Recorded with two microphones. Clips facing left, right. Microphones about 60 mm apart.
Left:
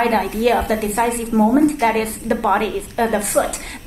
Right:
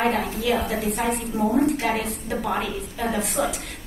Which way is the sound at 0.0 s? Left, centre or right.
Left.